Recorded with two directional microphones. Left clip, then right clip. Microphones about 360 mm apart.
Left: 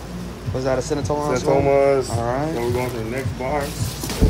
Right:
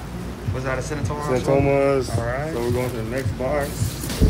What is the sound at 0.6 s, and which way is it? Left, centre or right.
Speech, centre.